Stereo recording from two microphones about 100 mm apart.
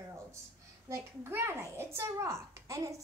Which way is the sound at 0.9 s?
25° right (ahead or behind).